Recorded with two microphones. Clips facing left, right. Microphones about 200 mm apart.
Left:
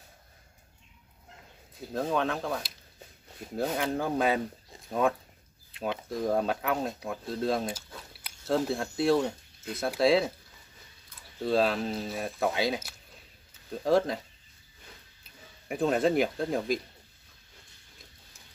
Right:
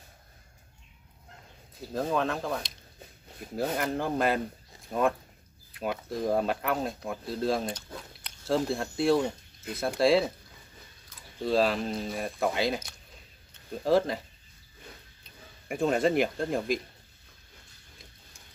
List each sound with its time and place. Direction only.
1.8 s speech: centre (ahead or behind)
11.4 s speech: centre (ahead or behind)
15.7 s speech: centre (ahead or behind)